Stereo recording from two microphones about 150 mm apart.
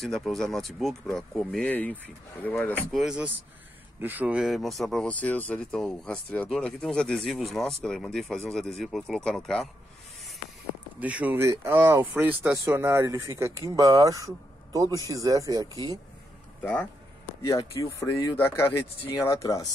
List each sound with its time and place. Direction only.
0.0 s speech: centre (ahead or behind)
2.9 s speech: 5° right (ahead or behind)
11.0 s speech: 10° right (ahead or behind)
17.4 s speech: 25° left (ahead or behind)